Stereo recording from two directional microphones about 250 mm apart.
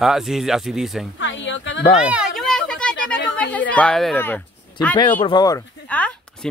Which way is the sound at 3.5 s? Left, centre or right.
Centre.